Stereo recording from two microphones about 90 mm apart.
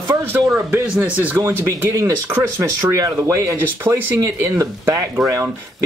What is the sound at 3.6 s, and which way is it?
Speech, 20° right (ahead or behind).